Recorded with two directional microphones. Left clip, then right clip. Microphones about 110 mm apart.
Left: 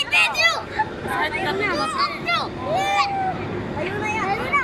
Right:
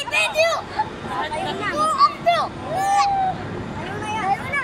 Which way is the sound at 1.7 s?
50° right (ahead or behind).